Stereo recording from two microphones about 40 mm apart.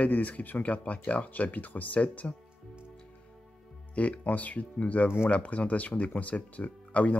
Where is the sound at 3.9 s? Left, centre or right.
Left.